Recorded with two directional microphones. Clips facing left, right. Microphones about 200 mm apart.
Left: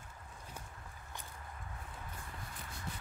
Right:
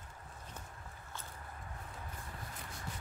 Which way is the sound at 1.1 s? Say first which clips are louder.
Right 1 dB; 15° left (ahead or behind).